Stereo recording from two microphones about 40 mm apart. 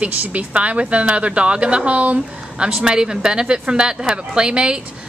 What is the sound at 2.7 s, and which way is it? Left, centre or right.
A woman's voice, centre.